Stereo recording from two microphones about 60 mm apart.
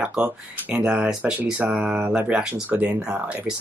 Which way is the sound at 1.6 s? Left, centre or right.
Right.